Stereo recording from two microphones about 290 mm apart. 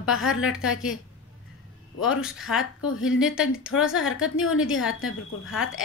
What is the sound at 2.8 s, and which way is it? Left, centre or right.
Speech, left.